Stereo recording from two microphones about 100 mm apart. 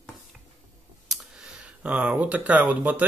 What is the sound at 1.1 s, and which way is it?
Speech, 5° right (ahead or behind).